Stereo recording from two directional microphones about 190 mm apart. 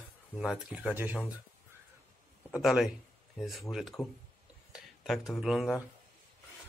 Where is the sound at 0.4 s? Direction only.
5° right (ahead or behind).